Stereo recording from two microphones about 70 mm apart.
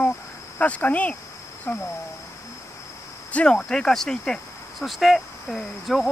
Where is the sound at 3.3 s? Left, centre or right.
Centre.